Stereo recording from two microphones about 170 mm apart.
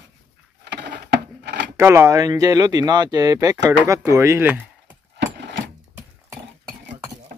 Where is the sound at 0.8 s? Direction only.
75° right (ahead or behind).